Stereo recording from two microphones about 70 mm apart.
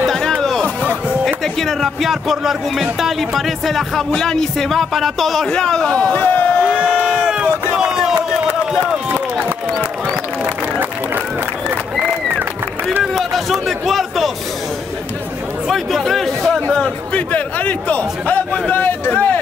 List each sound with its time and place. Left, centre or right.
0.0 s music: centre
1.2 s a man's voice: centre
6.1 s speech: left
6.6 s crowd: centre
7.7 s a sound: centre
13.0 s a man's voice: centre
15.7 s a man's voice: centre
16.8 s a man's voice: centre